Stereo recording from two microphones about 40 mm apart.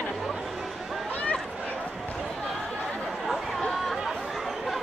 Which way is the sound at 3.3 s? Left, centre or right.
Centre.